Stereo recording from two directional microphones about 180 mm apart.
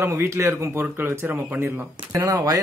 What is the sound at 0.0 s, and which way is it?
Speech, 15° right (ahead or behind).